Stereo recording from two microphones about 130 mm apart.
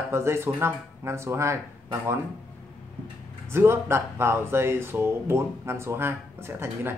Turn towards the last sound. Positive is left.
turn(degrees=-15)  # may be behind; listen again after turning